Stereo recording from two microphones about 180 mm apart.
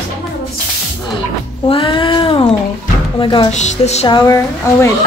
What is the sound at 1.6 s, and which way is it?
Speech, 30° left (ahead or behind).